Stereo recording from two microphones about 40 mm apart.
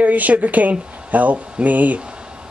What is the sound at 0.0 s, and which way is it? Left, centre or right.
Speech, right.